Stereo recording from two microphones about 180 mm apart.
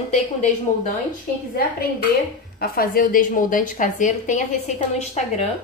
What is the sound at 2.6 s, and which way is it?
A woman's voice, 55° left (ahead or behind).